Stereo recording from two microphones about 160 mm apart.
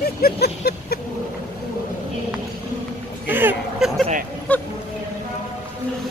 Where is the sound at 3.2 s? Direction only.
10° right (ahead or behind).